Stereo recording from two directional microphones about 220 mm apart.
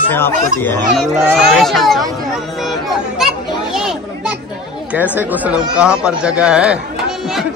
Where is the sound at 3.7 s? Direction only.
Centre (ahead or behind).